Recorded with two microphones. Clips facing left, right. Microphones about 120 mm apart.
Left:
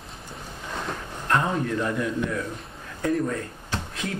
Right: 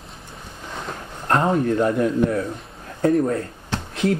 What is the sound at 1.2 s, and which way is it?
A man's voice, 35° right (ahead or behind).